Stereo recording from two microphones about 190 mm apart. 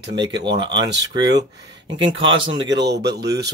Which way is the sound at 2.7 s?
65° right (ahead or behind).